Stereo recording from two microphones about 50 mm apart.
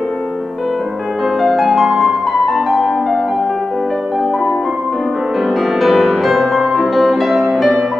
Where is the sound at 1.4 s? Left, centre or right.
Centre.